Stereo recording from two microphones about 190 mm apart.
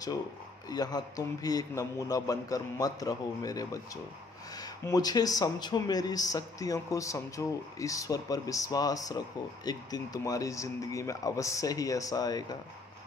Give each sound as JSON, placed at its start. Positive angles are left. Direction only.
{"t": 0.7, "sound": "speech", "side_deg": 20}